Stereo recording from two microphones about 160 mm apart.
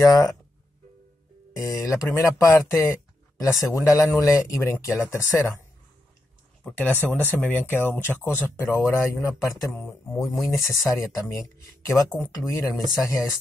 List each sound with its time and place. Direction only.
0.0 s speech: 20° left (ahead or behind)
1.6 s speech: 20° left (ahead or behind)
6.6 s speech: 10° left (ahead or behind)